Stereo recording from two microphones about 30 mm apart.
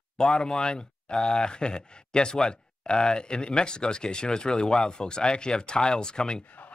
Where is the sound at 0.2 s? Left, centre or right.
Left.